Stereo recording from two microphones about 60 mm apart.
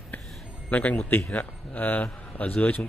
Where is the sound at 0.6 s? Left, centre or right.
Left.